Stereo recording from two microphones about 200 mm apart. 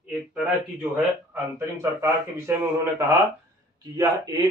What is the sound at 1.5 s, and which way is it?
Speech, 15° right (ahead or behind).